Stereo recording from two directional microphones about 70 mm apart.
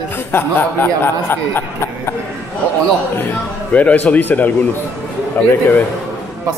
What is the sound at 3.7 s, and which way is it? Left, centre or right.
A man's voice, left.